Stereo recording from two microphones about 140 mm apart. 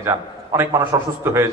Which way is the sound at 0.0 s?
20° right (ahead or behind).